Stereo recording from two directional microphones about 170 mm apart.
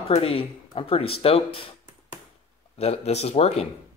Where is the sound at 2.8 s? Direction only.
40° left (ahead or behind).